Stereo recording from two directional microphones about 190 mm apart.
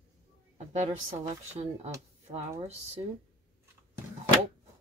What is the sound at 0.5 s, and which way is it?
Speech, 35° right (ahead or behind).